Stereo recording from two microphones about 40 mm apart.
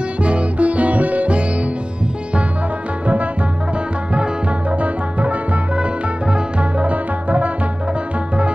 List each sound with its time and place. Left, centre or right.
0.2 s music: right
4.1 s music: right